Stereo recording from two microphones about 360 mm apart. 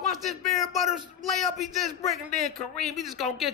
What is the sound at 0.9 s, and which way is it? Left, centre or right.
Speech, centre.